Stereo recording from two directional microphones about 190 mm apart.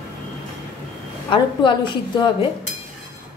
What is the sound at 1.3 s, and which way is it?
A woman's voice, 25° left (ahead or behind).